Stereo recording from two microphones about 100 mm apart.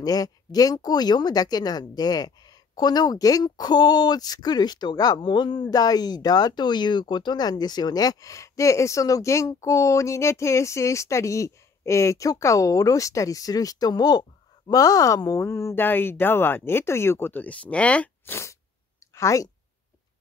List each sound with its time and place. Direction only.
0.0 s speech: 40° left (ahead or behind)
5.7 s a woman's voice: 40° left (ahead or behind)